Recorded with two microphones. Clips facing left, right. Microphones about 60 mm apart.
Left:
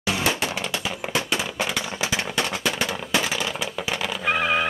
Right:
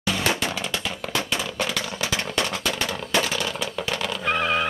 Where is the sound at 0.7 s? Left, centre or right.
Centre.